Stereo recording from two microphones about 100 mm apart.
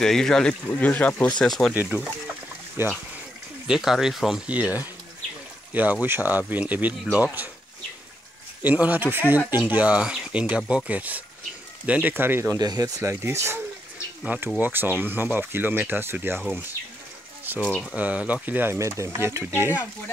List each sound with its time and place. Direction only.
0.0 s speech: 5° left (ahead or behind)
1.4 s speech: 5° left (ahead or behind)
1.7 s speech: 15° right (ahead or behind)
3.6 s speech: 5° right (ahead or behind)
4.5 s speech: 15° right (ahead or behind)
8.6 s speech: 15° right (ahead or behind)
12.5 s speech: 40° right (ahead or behind)
14.2 s speech: 15° right (ahead or behind)
17.9 s speech: 15° right (ahead or behind)
19.6 s speech: 15° right (ahead or behind)